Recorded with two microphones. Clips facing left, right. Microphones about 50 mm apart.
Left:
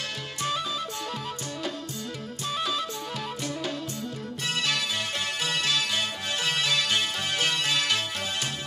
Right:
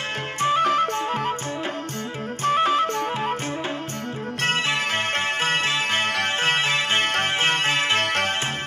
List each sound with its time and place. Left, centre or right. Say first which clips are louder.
0.4 s music: right 10 dB; right
0.7 s music: right 11 dB; right
2.4 s music: right 11 dB; right
4.6 s music: right 5 dB; right
7.1 s music: right 8 dB; right
7.3 s music: right 5 dB; right
8.0 s music: right 9 dB; right